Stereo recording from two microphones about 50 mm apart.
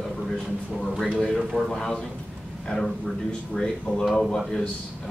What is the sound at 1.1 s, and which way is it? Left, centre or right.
A man's voice, centre.